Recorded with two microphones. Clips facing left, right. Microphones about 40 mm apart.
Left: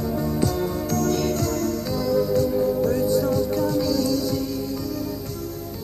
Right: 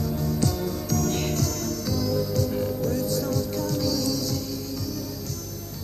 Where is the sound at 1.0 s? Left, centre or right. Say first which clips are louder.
Left 4 dB; centre.